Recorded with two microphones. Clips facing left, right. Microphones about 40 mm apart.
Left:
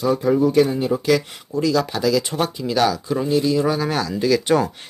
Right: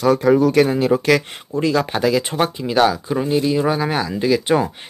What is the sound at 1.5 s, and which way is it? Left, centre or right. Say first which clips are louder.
Speech: right 1 dB; right.